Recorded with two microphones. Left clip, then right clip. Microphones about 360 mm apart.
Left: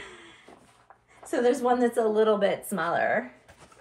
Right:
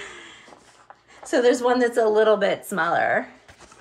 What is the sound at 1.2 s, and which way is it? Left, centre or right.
A woman's voice, right.